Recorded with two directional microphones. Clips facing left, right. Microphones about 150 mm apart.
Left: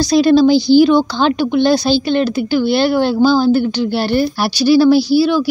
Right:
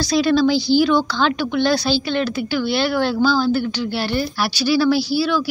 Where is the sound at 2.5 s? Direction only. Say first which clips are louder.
Left 6 dB; 45° left (ahead or behind).